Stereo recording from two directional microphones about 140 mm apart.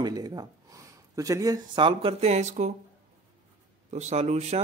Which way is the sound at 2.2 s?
55° right (ahead or behind).